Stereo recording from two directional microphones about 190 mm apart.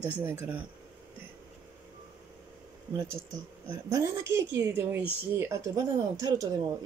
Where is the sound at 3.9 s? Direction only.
15° right (ahead or behind).